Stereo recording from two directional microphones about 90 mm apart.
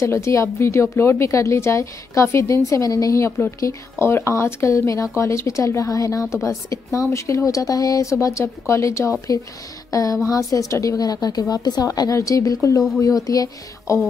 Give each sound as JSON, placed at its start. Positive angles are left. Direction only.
{"t": 0.0, "sound": "a woman's voice", "side_deg": 35}